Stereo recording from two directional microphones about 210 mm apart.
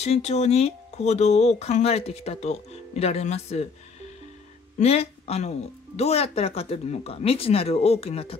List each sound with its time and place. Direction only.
0.0 s speech: 30° left (ahead or behind)
4.7 s speech: 30° left (ahead or behind)